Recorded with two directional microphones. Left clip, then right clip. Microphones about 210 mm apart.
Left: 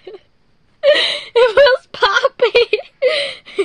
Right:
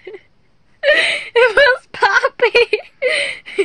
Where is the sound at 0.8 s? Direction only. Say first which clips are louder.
Left 1 dB; 15° right (ahead or behind).